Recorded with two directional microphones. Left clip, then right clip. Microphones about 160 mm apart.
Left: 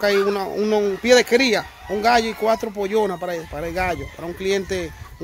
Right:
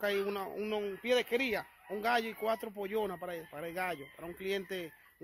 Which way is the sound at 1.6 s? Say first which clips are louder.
Left 16 dB; 5° left (ahead or behind).